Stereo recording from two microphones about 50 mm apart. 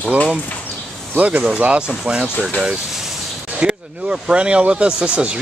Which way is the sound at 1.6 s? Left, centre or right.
Right.